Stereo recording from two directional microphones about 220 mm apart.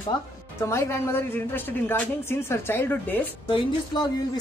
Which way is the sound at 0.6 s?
10° left (ahead or behind).